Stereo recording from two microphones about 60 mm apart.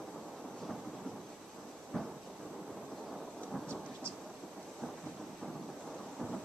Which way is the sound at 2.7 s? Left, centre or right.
Centre.